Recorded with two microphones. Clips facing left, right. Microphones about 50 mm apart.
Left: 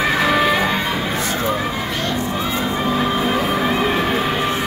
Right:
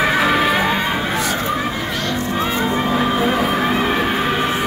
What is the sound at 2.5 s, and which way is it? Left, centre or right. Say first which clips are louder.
Music: right 1 dB; centre.